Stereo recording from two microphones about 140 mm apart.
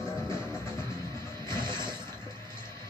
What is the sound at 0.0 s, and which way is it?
Music, 20° left (ahead or behind).